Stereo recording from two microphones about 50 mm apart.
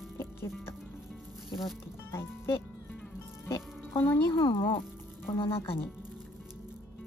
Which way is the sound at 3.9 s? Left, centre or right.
Left.